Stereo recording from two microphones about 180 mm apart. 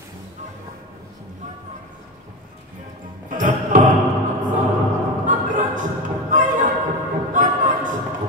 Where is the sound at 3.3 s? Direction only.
45° right (ahead or behind).